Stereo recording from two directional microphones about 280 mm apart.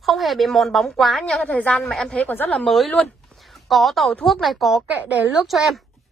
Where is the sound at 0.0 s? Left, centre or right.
Centre.